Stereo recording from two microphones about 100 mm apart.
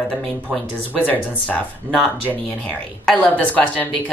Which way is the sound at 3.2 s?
15° left (ahead or behind).